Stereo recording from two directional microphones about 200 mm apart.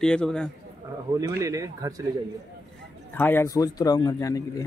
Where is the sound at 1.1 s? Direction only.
15° right (ahead or behind).